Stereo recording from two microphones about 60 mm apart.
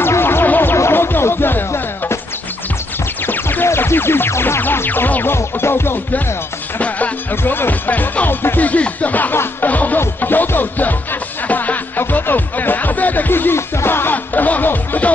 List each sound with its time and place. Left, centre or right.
0.0 s music: left
3.3 s music: left
6.8 s speech: left
7.5 s speech: left
8.6 s speech: left
11.4 s music: left